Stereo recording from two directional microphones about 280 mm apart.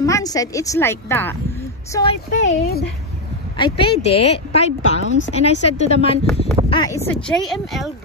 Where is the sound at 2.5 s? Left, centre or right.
Left.